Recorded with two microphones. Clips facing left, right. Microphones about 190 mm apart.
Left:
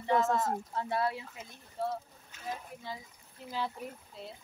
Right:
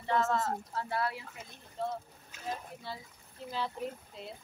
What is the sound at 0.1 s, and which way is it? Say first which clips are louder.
Speech: left 2 dB; 15° left (ahead or behind).